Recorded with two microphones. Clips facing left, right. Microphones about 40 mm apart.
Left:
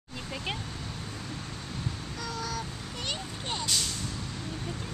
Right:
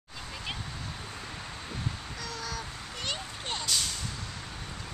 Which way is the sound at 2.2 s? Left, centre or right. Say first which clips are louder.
Left 3 dB; centre.